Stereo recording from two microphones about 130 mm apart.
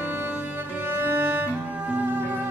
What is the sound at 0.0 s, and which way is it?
Cello, 15° right (ahead or behind).